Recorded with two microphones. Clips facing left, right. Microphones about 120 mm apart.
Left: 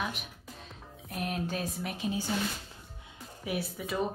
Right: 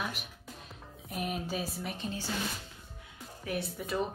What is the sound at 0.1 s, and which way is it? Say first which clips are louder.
Music: left 1 dB; centre (ahead or behind).